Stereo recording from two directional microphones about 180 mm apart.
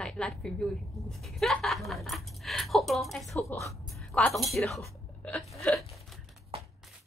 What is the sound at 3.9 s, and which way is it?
Speech, 5° left (ahead or behind).